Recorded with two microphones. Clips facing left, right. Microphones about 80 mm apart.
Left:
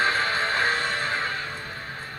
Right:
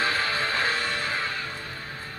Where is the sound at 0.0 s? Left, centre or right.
Left.